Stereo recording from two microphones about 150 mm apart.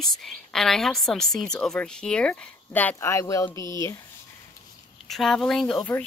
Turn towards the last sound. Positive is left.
turn(degrees=5)  # may be behind; listen again after turning